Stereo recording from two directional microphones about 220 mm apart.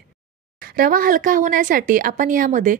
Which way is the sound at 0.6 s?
40° right (ahead or behind).